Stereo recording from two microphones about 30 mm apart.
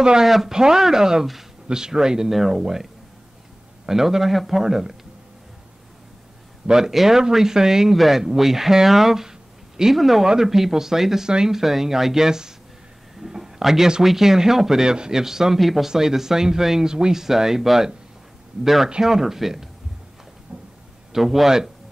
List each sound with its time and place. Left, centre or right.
0.2 s speech: centre
0.5 s speech: right
2.3 s speech: centre
2.6 s speech: centre
4.6 s speech: centre
6.9 s speech: centre
7.9 s speech: centre
9.9 s speech: centre
13.2 s a sound: centre
14.0 s speech: centre
15.9 s speech: centre
21.1 s a man's voice: centre